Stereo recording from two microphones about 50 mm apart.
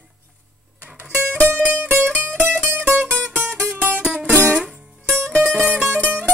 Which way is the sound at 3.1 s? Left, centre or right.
Left.